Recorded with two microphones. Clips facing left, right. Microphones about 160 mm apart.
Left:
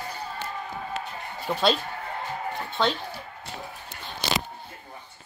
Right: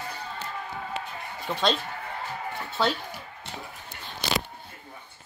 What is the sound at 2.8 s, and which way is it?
Speech, 5° right (ahead or behind).